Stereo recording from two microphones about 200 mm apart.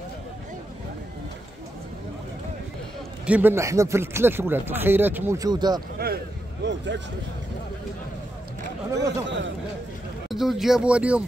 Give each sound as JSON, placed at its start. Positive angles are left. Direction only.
{"t": 3.3, "sound": "speech", "side_deg": -10}
{"t": 5.9, "sound": "a sound", "side_deg": -50}
{"t": 9.0, "sound": "speech", "side_deg": -65}
{"t": 10.3, "sound": "speech", "side_deg": 0}